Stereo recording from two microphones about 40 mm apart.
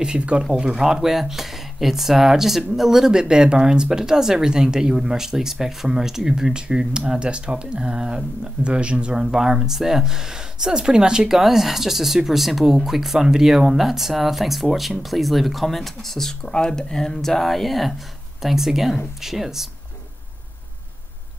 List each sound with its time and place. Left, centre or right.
0.0 s speech: right
8.6 s speech: right
9.1 s speech: centre
11.3 s speech: centre